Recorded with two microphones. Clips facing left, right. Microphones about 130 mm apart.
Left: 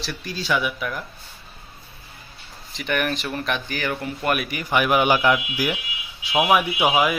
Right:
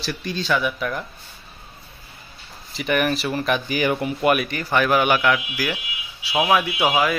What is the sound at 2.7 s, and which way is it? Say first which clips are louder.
Speech: right 3 dB; 5° right (ahead or behind).